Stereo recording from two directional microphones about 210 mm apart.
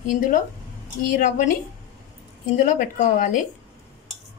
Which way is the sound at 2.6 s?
40° left (ahead or behind).